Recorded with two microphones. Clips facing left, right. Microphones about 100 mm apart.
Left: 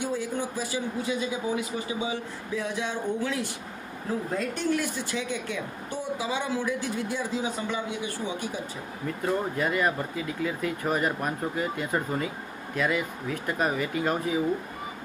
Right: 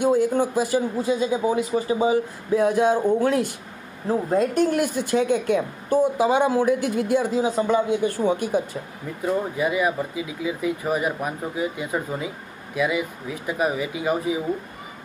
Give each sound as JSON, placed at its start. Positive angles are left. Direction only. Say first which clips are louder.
{"t": 0.0, "sound": "speech", "louder": "right 10 dB", "side_deg": -50}
{"t": 4.1, "sound": "speech", "louder": "right 9 dB", "side_deg": -35}
{"t": 7.4, "sound": "a man's voice", "louder": "right 10 dB", "side_deg": -35}
{"t": 9.0, "sound": "speech", "louder": "right 3 dB", "side_deg": -5}